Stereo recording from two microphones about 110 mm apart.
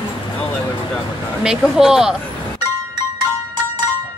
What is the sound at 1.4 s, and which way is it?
Speech, 5° right (ahead or behind).